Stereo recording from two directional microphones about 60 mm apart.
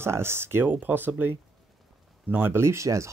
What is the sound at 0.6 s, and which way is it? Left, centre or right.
Speech, right.